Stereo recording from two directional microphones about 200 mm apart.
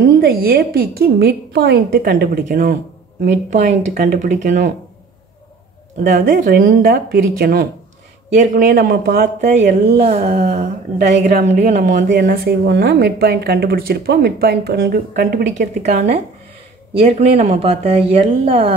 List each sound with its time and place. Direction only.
0.2 s a woman's voice: 50° right (ahead or behind)
6.0 s a woman's voice: 40° right (ahead or behind)
12.1 s speech: 50° right (ahead or behind)
15.8 s a woman's voice: 35° right (ahead or behind)